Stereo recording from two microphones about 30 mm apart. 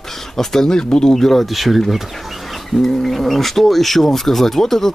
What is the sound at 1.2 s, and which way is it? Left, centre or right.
Speech, centre.